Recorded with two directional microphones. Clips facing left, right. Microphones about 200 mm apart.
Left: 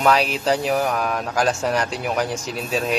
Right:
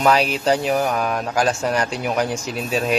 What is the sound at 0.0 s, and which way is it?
Speech, centre (ahead or behind).